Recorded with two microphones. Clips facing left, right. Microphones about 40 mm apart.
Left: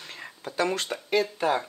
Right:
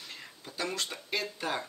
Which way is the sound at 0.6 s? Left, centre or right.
Left.